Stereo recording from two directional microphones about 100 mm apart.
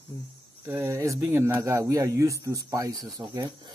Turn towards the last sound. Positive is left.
turn(degrees=-40)  # may be behind; listen again after turning